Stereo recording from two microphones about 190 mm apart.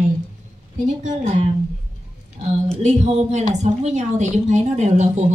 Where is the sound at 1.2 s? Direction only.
40° right (ahead or behind).